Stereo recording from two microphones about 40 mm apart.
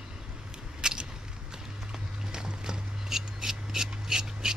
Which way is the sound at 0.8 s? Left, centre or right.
Centre.